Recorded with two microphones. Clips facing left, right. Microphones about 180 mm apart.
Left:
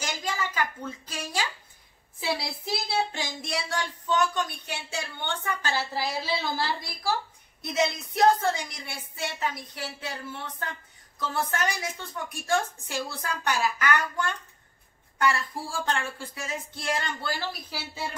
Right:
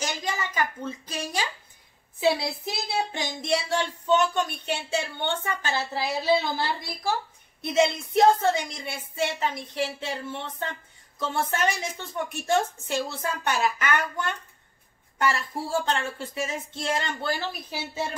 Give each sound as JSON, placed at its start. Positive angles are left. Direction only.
{"t": 0.0, "sound": "speech", "side_deg": -20}
{"t": 7.6, "sound": "speech", "side_deg": -25}